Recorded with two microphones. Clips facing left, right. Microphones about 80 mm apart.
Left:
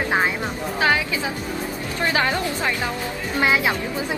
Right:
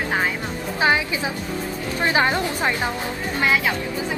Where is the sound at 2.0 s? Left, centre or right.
Right.